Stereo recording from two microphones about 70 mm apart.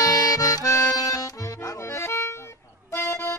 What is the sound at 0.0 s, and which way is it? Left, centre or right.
Accordion, left.